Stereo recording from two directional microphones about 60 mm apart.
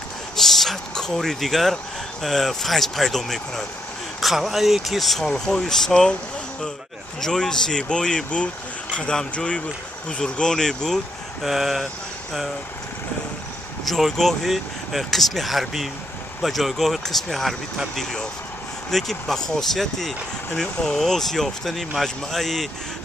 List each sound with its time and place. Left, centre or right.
0.4 s speech: centre
7.2 s speech: centre
11.4 s speech: centre
13.8 s speech: centre